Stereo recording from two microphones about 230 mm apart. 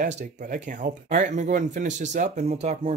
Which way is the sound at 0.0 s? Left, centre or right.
Right.